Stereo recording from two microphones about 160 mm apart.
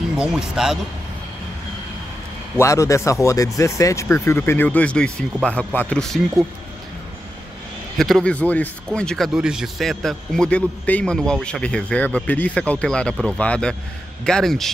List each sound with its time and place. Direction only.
0.2 s speech: 5° right (ahead or behind)
2.5 s speech: 20° left (ahead or behind)
8.0 s speech: 5° left (ahead or behind)